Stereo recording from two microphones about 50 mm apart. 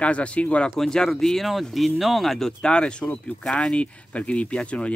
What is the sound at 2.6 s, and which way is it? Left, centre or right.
Speech, centre.